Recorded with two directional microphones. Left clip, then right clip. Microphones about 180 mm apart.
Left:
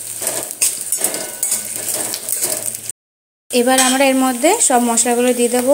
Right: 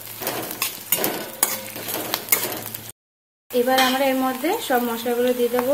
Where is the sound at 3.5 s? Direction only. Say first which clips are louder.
Left 4 dB; 45° left (ahead or behind).